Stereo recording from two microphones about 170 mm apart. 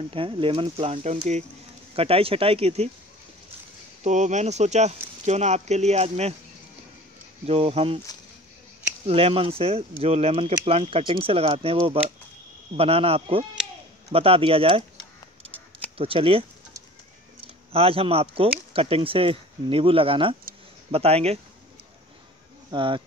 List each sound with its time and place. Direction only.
0.0 s speech: 30° right (ahead or behind)
4.0 s speech: 45° right (ahead or behind)
7.4 s speech: 35° right (ahead or behind)
9.0 s speech: 35° right (ahead or behind)
16.0 s speech: 35° right (ahead or behind)
17.7 s speech: 35° right (ahead or behind)
22.7 s speech: 30° right (ahead or behind)